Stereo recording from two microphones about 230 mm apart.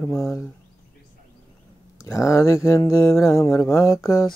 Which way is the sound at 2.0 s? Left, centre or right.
Centre.